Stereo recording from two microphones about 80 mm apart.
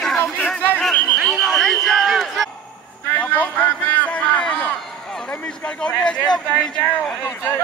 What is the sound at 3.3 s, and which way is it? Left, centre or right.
Music, left.